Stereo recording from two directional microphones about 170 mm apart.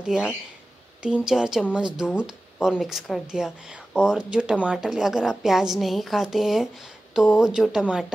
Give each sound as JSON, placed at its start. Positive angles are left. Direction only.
{"t": 0.1, "sound": "speech", "side_deg": -5}